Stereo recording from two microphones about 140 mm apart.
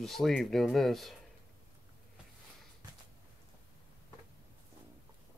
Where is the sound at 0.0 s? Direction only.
Centre (ahead or behind).